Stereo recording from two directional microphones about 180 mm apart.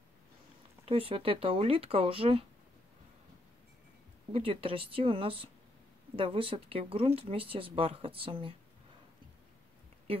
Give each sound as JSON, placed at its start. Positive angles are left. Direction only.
{"t": 0.8, "sound": "speech", "side_deg": -30}
{"t": 4.3, "sound": "speech", "side_deg": -30}